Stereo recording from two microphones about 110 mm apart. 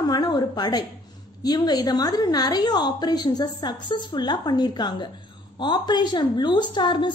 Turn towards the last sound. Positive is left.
turn(degrees=45)  # may be behind; listen again after turning